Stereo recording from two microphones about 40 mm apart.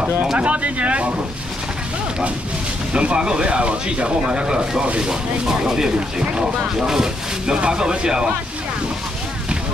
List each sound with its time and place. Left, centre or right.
0.4 s speech: right
2.9 s speech: right
5.5 s speech: centre
6.1 s speech: right
6.9 s speech: centre